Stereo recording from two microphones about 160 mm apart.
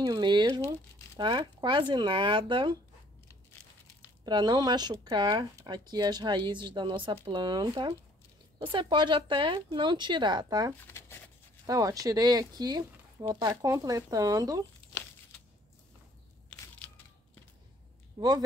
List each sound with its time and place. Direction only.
0.0 s speech: 25° right (ahead or behind)
4.2 s speech: 25° right (ahead or behind)
10.9 s a sound: 15° left (ahead or behind)
11.6 s speech: 20° right (ahead or behind)
18.2 s speech: 20° right (ahead or behind)